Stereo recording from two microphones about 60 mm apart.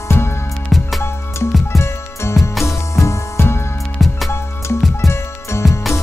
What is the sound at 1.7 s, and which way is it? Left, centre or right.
Music, left.